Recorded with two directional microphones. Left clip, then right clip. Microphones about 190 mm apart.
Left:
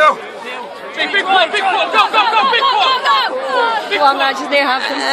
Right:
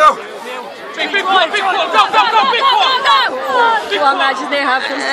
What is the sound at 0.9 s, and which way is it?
Speech, 10° left (ahead or behind).